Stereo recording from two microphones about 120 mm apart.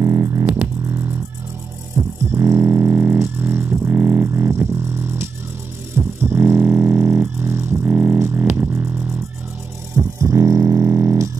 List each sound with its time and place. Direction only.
0.0 s music: 25° right (ahead or behind)
2.0 s music: 25° right (ahead or behind)